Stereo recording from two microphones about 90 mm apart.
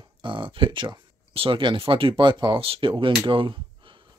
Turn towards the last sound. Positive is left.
turn(degrees=-65)  # may be behind; listen again after turning